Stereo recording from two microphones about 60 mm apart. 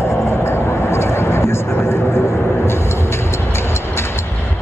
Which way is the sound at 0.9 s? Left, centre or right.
Left.